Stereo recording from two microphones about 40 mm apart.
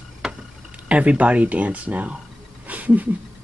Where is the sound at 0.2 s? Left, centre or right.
Centre.